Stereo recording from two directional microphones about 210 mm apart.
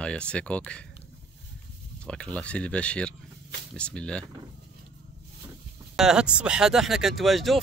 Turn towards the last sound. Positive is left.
turn(degrees=0)  # may be behind; listen again after turning